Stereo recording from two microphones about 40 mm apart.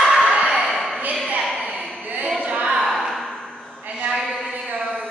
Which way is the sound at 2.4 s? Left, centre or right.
Right.